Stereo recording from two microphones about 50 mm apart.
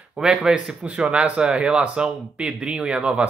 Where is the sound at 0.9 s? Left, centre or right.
Right.